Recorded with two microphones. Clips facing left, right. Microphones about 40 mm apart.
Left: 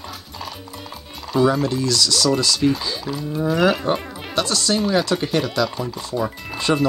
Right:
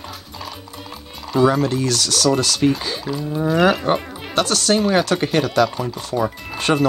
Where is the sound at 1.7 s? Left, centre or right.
Right.